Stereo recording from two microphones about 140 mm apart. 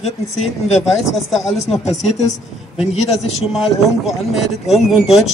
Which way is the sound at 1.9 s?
55° left (ahead or behind).